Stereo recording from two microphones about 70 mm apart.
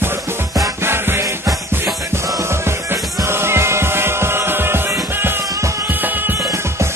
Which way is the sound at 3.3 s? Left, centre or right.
Right.